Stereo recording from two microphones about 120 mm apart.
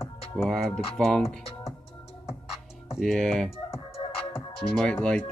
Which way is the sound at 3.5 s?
55° left (ahead or behind).